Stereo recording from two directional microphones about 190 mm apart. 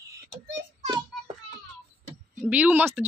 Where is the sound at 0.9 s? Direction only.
25° right (ahead or behind).